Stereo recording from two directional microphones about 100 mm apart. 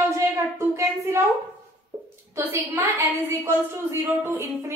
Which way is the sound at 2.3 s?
25° right (ahead or behind).